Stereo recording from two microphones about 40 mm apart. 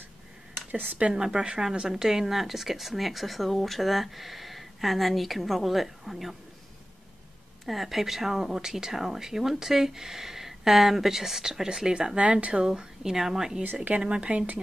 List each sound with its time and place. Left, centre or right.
0.7 s speech: right
1.1 s speech: right; by 6.3 s centre
7.6 s speech: centre
12.2 s speech: right
12.6 s speech: centre
14.0 s speech: right